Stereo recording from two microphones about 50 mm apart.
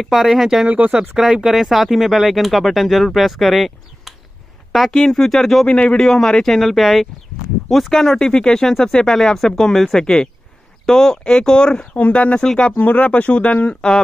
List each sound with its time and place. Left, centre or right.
0.0 s speech: centre
5.7 s speech: left
5.9 s speech: centre
7.9 s speech: centre
12.7 s speech: left